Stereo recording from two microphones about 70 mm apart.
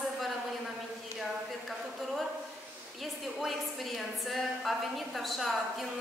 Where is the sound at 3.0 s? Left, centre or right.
Centre.